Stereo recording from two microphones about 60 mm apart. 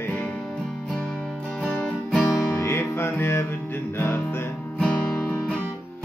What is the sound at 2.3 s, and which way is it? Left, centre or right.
Music, left.